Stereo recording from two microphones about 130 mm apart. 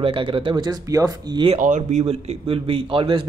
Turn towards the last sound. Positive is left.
turn(degrees=-45)  # may be behind; listen again after turning